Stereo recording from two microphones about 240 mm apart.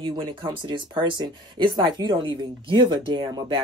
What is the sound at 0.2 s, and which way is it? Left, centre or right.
Speech, centre.